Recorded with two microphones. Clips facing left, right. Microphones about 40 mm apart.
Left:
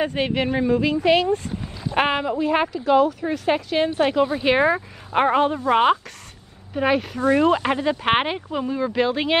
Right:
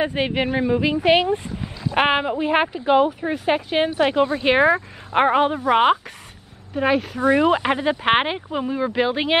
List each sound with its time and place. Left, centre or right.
0.0 s a woman's voice: centre
6.7 s speech: centre
7.2 s speech: centre